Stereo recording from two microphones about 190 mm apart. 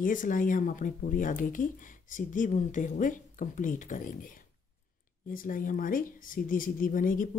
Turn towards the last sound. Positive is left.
turn(degrees=45)  # may be behind; listen again after turning